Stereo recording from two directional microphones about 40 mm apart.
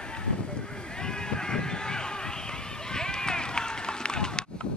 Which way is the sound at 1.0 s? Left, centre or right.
Centre.